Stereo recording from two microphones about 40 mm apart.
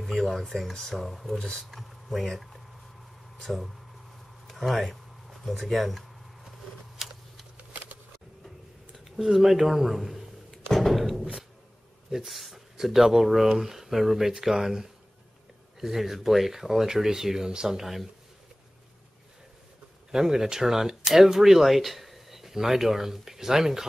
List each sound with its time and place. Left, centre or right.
0.0 s speech: centre
4.5 s a sound: centre
5.5 s speech: centre
7.0 s a sound: centre
7.5 s a sound: right
9.1 s speech: centre
10.7 s thump: centre
12.3 s speech: centre
20.1 s speech: centre